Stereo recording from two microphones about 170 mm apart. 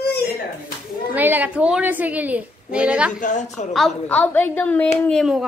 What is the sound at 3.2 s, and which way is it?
Speech, 45° left (ahead or behind).